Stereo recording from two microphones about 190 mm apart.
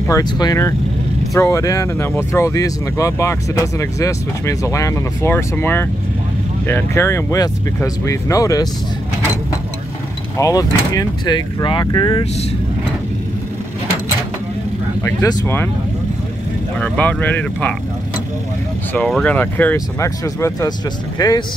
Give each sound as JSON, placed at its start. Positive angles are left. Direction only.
{"t": 0.1, "sound": "speech", "side_deg": 20}
{"t": 10.3, "sound": "speech", "side_deg": 20}
{"t": 15.0, "sound": "speech", "side_deg": 20}
{"t": 16.7, "sound": "speech", "side_deg": 5}
{"t": 18.9, "sound": "speech", "side_deg": 5}